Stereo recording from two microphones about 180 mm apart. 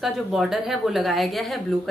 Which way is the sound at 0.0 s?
Centre (ahead or behind).